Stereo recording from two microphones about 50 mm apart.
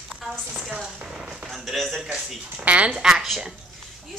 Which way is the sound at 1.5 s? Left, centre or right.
Centre.